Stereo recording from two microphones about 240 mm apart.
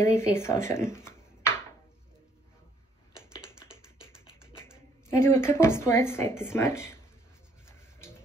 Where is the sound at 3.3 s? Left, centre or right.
Centre.